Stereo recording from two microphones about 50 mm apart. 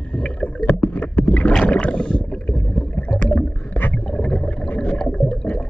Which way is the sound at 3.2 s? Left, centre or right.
Left.